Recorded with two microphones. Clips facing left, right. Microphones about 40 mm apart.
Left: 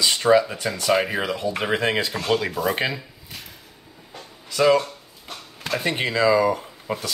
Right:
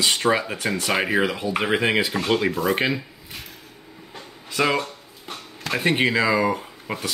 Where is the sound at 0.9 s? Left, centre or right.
Centre.